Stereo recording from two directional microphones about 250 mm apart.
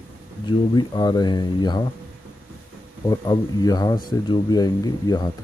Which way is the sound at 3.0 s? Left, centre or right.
Centre.